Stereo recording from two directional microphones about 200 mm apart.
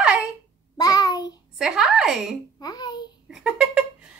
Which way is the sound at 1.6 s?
5° right (ahead or behind).